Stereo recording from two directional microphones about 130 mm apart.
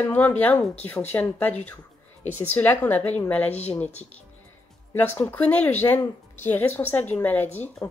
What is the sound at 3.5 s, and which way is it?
Speech, 55° left (ahead or behind).